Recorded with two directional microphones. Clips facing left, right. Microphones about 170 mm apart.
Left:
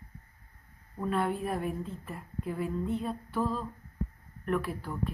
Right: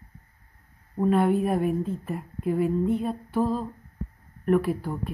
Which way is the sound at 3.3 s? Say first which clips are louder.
Right 6 dB; 45° right (ahead or behind).